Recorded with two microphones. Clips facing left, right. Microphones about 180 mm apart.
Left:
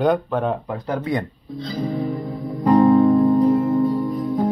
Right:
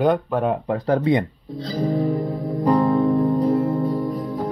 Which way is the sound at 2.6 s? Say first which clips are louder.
Left 4 dB; 55° left (ahead or behind).